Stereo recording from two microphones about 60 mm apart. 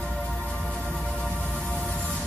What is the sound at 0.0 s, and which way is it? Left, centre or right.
Music, left.